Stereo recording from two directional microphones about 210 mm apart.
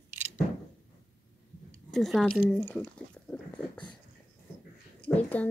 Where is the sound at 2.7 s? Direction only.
5° left (ahead or behind).